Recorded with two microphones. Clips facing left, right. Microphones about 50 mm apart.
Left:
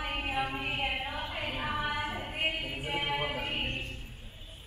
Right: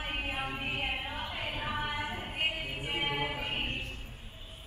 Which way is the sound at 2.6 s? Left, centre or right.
Centre.